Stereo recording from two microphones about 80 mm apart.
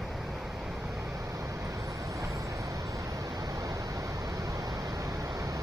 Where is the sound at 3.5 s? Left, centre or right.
Right.